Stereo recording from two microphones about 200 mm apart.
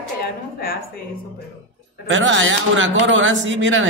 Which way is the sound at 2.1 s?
75° right (ahead or behind).